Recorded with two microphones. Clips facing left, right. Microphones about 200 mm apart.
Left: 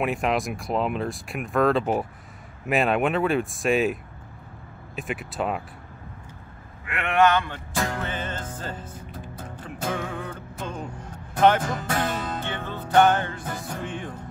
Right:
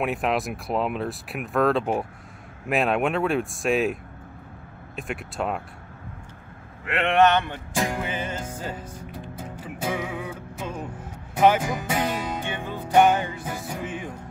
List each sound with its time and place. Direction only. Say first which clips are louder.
0.0 s speech: even; centre (ahead or behind)
7.0 s speech: right 1 dB; 25° right (ahead or behind)
7.5 s music: right 2 dB; 15° right (ahead or behind)